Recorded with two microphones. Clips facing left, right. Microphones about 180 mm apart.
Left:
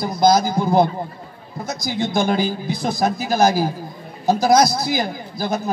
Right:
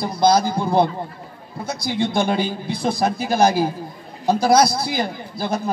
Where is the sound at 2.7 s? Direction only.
30° right (ahead or behind).